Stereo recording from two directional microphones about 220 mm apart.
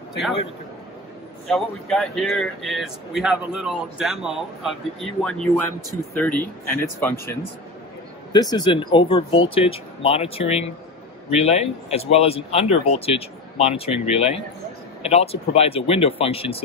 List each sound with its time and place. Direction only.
1.5 s speech: centre (ahead or behind); by 16.6 s 25° left (ahead or behind)